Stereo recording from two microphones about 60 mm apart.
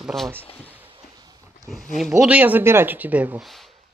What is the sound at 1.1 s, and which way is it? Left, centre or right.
Dog, right.